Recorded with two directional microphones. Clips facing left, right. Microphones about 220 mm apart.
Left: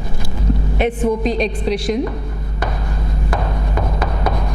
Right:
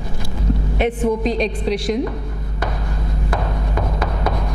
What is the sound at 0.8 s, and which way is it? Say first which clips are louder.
A woman's voice: left 1 dB; 10° left (ahead or behind).